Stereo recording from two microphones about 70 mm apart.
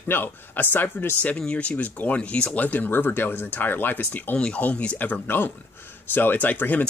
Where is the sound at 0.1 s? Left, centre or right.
Left.